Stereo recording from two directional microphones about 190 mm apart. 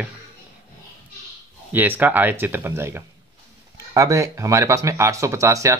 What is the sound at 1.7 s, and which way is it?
Speech, 10° right (ahead or behind).